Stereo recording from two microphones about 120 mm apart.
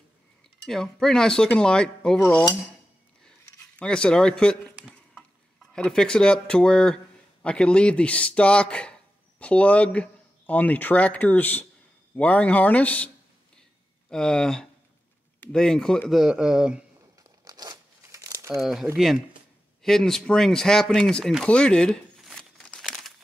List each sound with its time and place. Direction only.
0.7 s speech: 5° left (ahead or behind)
3.3 s a sound: 10° left (ahead or behind)
5.7 s speech: 5° left (ahead or behind)
17.2 s crumpling: 30° right (ahead or behind)
18.6 s speech: centre (ahead or behind)
21.5 s crumpling: 10° left (ahead or behind)